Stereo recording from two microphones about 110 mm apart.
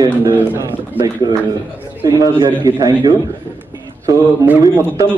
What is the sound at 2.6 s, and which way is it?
Speech, 35° right (ahead or behind).